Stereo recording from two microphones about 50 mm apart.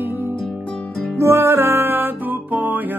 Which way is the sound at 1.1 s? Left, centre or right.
Right.